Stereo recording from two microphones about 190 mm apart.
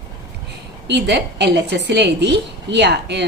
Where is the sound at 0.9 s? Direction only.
60° right (ahead or behind).